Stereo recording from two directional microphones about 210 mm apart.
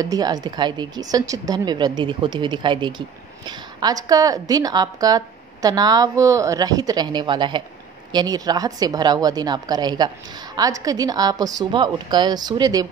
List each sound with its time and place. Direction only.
0.0 s a woman's voice: 20° right (ahead or behind)